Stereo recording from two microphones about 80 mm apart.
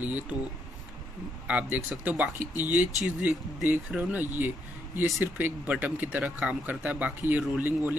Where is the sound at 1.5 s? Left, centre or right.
Centre.